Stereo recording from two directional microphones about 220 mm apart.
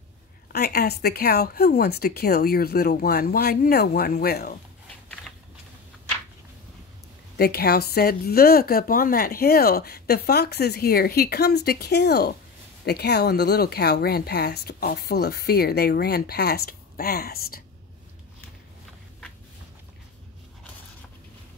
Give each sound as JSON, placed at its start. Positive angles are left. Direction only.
{"t": 0.5, "sound": "a woman's voice", "side_deg": 45}
{"t": 7.3, "sound": "a woman's voice", "side_deg": 45}